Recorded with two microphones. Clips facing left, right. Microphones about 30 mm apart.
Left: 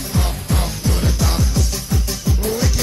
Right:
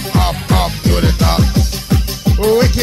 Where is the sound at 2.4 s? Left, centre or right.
Right.